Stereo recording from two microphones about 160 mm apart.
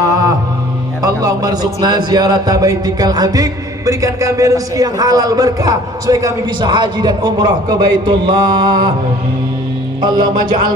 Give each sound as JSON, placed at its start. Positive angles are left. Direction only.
{"t": 1.0, "sound": "speech", "side_deg": -25}
{"t": 10.0, "sound": "speech", "side_deg": -25}